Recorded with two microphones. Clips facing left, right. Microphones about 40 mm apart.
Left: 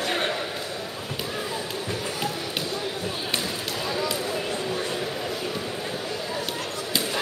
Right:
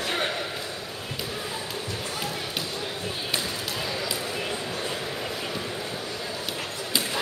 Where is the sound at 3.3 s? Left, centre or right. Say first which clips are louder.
Left 1 dB; centre.